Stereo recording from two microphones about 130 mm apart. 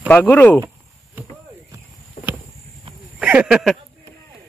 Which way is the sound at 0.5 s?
15° right (ahead or behind).